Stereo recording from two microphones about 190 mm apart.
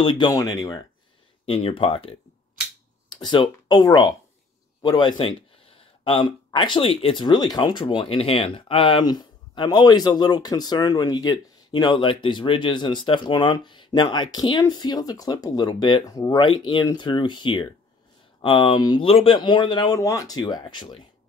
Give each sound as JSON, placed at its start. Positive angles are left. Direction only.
{"t": 0.0, "sound": "speech", "side_deg": 25}
{"t": 1.4, "sound": "speech", "side_deg": 30}